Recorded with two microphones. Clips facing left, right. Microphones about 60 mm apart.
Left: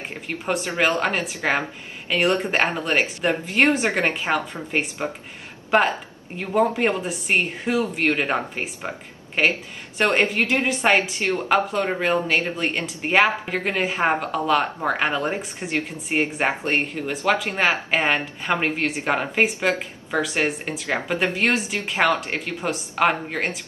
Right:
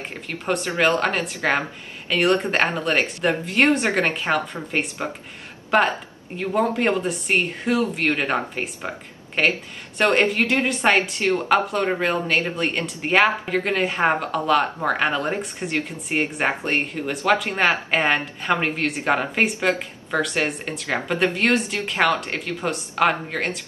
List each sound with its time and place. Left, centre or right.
0.3 s speech: centre
6.3 s speech: centre